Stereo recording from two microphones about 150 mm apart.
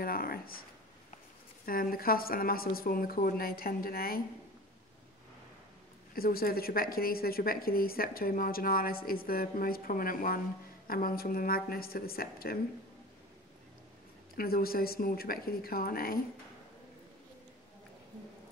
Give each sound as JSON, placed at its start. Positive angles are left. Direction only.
{"t": 0.0, "sound": "speech", "side_deg": 75}
{"t": 1.7, "sound": "a woman's voice", "side_deg": 70}
{"t": 6.1, "sound": "a woman's voice", "side_deg": 85}
{"t": 14.3, "sound": "a woman's voice", "side_deg": 80}